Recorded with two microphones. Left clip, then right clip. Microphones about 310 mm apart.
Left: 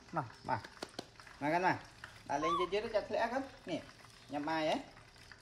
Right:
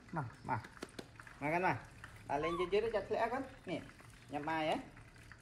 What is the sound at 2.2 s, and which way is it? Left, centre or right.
Dog, left.